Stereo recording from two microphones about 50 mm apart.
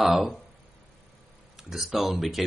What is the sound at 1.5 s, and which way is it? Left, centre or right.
Speech, centre.